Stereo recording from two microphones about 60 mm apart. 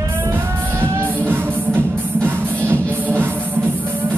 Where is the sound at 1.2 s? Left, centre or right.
Right.